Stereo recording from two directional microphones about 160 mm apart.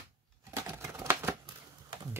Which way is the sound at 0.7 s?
15° right (ahead or behind).